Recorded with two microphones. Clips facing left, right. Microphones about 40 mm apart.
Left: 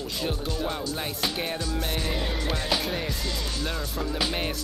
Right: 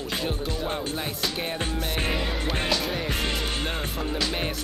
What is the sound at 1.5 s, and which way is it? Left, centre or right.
Music, right.